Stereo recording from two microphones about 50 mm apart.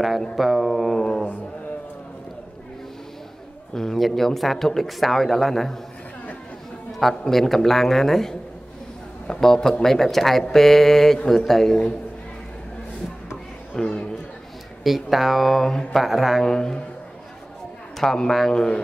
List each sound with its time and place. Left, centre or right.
0.4 s speech: centre
3.7 s speech: centre
6.9 s speech: centre
13.7 s a sound: centre
14.8 s speech: centre
16.4 s speech: centre
17.9 s speech: centre